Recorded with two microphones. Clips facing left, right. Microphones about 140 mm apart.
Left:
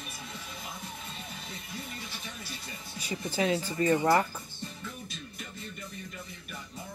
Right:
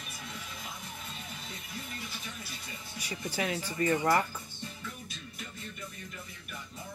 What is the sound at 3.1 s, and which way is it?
Speech, 25° left (ahead or behind).